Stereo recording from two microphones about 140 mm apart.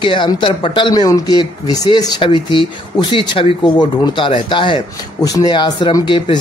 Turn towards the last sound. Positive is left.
turn(degrees=35)  # may be behind; listen again after turning